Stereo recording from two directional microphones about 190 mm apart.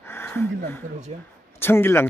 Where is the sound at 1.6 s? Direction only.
10° left (ahead or behind).